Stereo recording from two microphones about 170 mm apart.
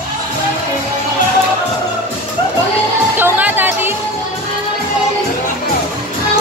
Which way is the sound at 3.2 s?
10° right (ahead or behind).